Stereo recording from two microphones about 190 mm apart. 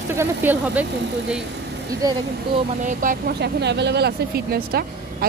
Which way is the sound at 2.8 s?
45° right (ahead or behind).